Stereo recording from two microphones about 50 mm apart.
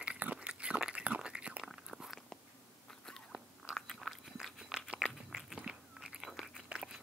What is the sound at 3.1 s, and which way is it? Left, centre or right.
Biting, centre.